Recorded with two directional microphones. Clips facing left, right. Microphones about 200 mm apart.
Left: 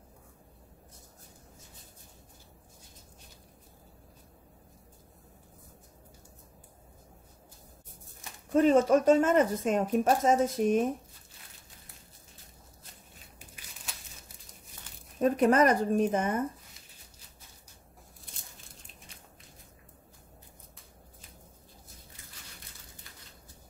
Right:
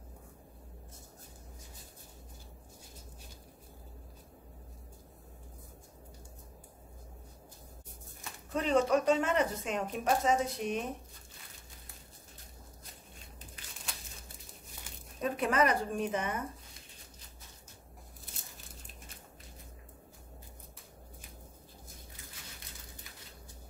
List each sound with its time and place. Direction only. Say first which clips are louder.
8.5 s speech: left 6 dB; 45° left (ahead or behind)
15.1 s speech: left 7 dB; 45° left (ahead or behind)